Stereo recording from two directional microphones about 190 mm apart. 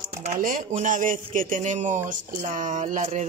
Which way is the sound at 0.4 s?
45° right (ahead or behind).